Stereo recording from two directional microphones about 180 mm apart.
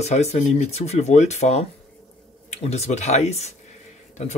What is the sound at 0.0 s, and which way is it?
Speech, 40° left (ahead or behind).